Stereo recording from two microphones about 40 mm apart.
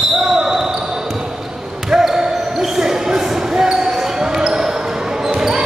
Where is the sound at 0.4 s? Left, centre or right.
Centre.